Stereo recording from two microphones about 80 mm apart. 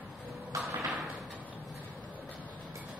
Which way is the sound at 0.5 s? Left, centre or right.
Right.